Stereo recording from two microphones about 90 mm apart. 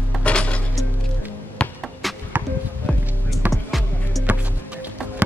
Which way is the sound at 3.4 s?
15° right (ahead or behind).